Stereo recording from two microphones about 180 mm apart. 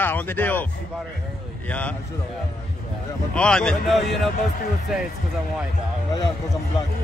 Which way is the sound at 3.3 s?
5° left (ahead or behind).